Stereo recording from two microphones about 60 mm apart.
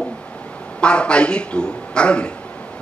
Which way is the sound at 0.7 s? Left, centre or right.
Centre.